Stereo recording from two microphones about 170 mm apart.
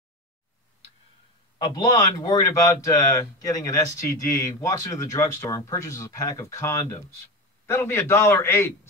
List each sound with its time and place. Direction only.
1.6 s a man's voice: 25° left (ahead or behind)